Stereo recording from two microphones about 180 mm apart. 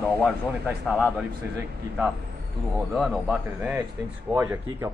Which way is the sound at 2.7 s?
Centre (ahead or behind).